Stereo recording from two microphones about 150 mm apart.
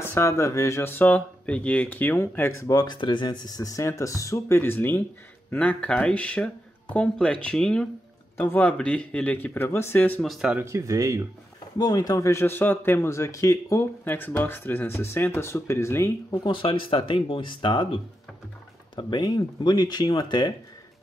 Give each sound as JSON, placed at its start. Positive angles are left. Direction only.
{"t": 0.0, "sound": "speech", "side_deg": 20}
{"t": 10.2, "sound": "speech", "side_deg": -5}
{"t": 10.6, "sound": "speech", "side_deg": -20}
{"t": 11.8, "sound": "a man's voice", "side_deg": 25}